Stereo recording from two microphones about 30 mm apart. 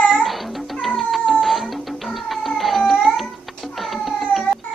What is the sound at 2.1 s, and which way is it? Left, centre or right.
Cat, centre.